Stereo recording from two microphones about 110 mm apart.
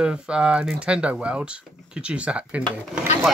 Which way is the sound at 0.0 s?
10° right (ahead or behind).